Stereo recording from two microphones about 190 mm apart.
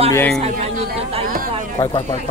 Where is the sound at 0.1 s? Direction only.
10° left (ahead or behind).